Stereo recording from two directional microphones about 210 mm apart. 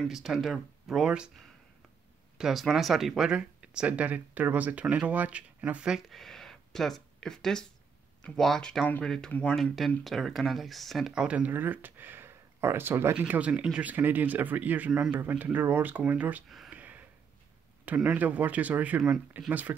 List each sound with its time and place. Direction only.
0.1 s speech: centre (ahead or behind)
2.3 s speech: centre (ahead or behind)